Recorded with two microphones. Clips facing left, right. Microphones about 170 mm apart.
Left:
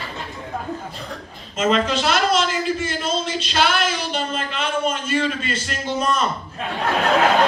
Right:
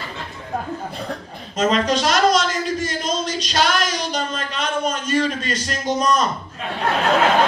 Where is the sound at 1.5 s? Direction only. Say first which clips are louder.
Right 1 dB; 40° right (ahead or behind).